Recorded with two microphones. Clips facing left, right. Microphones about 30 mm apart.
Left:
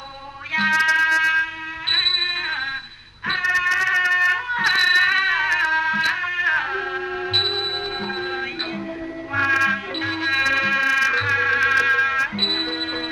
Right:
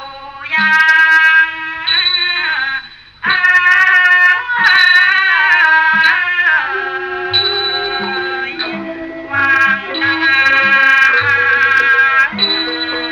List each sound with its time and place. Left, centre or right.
0.5 s music: right
7.3 s music: right
9.3 s music: right
10.0 s music: right